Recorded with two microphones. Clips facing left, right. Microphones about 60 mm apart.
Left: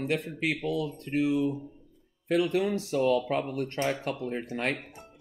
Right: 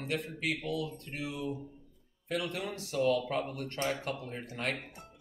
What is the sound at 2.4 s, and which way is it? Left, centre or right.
Speech, left.